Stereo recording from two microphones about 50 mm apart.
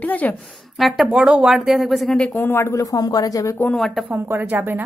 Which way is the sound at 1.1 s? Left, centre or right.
Centre.